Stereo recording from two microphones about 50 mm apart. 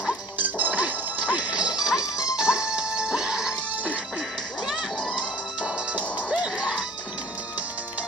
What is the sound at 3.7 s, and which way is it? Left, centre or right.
Music, right.